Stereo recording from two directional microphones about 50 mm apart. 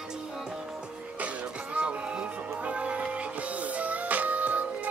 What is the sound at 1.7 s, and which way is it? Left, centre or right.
Music, right.